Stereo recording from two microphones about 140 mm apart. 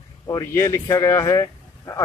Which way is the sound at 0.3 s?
25° left (ahead or behind).